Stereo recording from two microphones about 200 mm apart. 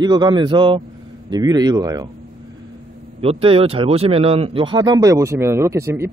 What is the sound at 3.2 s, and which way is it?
Speech, 30° right (ahead or behind).